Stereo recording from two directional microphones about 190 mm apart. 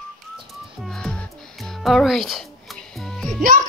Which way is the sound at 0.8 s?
Centre (ahead or behind).